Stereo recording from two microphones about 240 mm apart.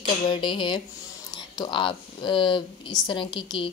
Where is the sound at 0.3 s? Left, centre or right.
Centre.